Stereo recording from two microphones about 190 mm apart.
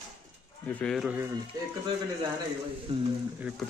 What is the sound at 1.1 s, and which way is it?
Speech, 15° right (ahead or behind).